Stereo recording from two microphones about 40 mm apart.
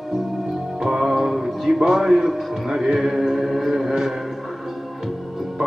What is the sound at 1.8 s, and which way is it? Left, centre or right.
Speech, centre.